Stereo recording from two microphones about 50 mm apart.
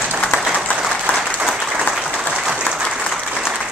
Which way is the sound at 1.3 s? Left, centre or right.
Centre.